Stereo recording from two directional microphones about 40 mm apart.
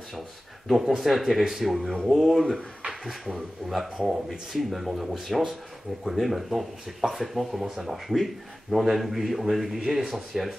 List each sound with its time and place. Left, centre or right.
0.7 s speech: centre
4.3 s speech: centre